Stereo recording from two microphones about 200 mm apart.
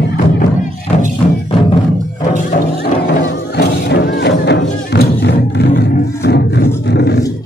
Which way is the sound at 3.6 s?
60° left (ahead or behind).